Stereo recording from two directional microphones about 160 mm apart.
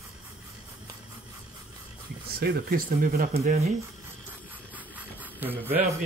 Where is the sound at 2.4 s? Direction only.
75° right (ahead or behind); by 3.6 s 55° right (ahead or behind).